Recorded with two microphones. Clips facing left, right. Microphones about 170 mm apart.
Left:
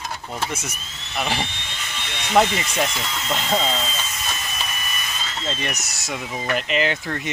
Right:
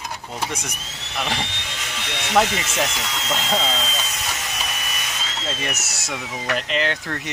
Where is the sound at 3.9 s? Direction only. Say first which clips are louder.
Right 1 dB; 75° right (ahead or behind).